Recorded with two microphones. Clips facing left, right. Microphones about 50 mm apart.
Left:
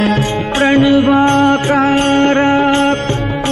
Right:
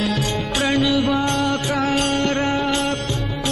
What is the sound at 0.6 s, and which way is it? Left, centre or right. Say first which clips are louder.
Music: left 9 dB; left.